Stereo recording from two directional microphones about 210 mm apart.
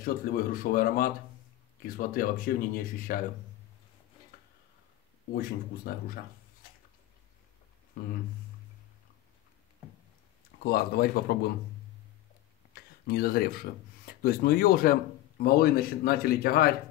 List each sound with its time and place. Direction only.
0.0 s speech: 45° left (ahead or behind)
5.9 s speech: 45° left (ahead or behind)
10.6 s speech: 45° left (ahead or behind)
12.7 s a sound: 45° left (ahead or behind)
14.0 s speech: 45° left (ahead or behind)